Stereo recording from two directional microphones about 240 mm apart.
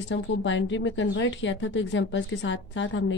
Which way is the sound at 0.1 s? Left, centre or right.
Left.